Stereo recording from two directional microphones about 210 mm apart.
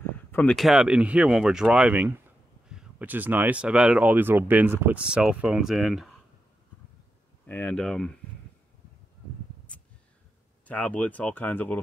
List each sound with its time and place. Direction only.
0.3 s speech: 5° left (ahead or behind)
7.4 s speech: 10° left (ahead or behind)
9.7 s a sound: 5° left (ahead or behind)
10.7 s speech: 5° left (ahead or behind)